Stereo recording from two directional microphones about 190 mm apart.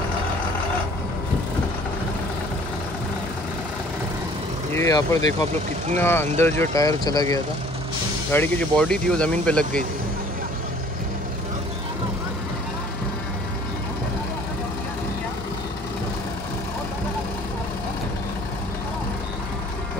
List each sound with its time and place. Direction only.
4.7 s speech: 15° left (ahead or behind)
8.3 s speech: 10° left (ahead or behind)